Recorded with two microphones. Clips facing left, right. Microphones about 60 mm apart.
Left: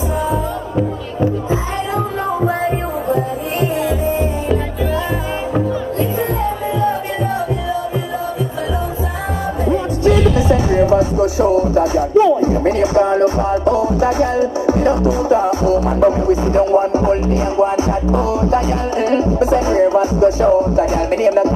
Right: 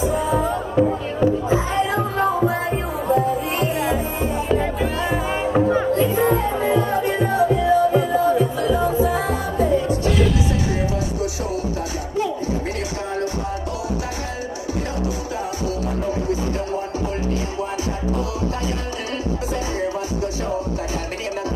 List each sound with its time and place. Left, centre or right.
5.7 s music: right
10.5 s music: left
19.0 s music: left